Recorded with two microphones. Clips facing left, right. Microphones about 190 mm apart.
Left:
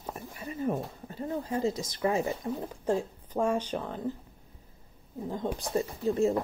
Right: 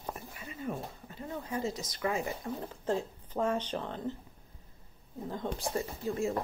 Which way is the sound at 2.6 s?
10° left (ahead or behind).